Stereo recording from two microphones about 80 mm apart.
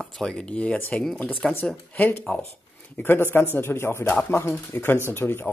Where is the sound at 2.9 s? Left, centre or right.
Left.